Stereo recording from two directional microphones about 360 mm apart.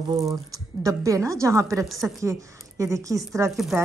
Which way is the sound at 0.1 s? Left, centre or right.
Centre.